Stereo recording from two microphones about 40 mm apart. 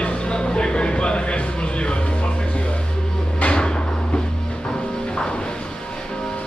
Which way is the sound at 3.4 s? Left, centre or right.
Left.